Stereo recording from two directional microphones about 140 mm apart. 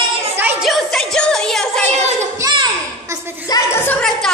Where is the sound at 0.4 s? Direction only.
15° right (ahead or behind).